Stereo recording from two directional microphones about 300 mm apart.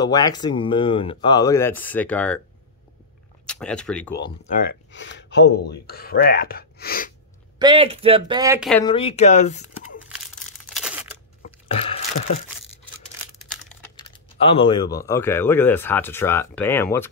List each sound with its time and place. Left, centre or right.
0.0 s speech: centre
3.4 s speech: centre
4.5 s speech: left
7.5 s speech: centre
8.8 s speech: centre
10.0 s tearing: centre
11.4 s a sound: left
13.7 s speech: centre